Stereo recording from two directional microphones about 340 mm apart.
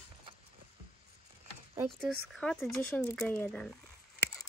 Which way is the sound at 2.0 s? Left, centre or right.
Centre.